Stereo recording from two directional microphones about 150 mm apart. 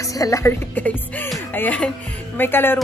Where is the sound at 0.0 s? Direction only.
20° left (ahead or behind).